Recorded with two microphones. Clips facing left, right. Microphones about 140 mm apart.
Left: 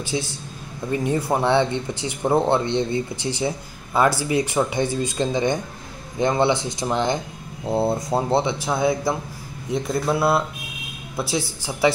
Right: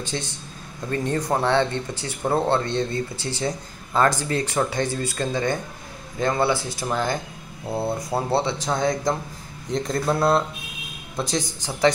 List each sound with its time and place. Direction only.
0.0 s speech: 10° left (ahead or behind); by 8.2 s 25° left (ahead or behind)
8.3 s speech: 15° left (ahead or behind)